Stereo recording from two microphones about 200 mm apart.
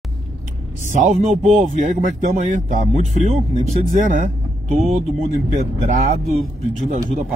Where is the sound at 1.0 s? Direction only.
35° right (ahead or behind).